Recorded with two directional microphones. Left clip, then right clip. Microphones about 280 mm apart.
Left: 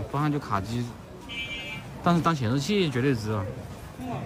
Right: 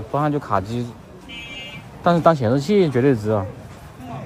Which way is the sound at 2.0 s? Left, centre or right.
Centre.